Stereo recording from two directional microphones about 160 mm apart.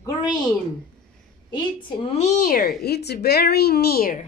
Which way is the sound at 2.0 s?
45° left (ahead or behind).